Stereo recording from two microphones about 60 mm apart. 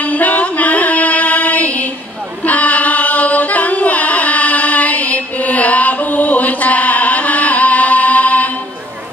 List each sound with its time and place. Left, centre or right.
0.0 s music: left
2.4 s singing: left